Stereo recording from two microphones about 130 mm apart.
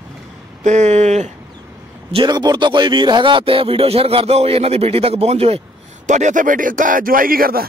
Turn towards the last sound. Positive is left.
turn(degrees=-90)